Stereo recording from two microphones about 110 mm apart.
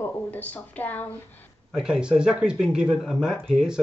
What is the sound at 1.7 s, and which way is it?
Speech, 5° right (ahead or behind).